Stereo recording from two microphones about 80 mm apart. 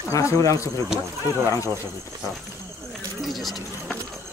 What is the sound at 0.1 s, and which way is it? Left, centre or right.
Speech, left.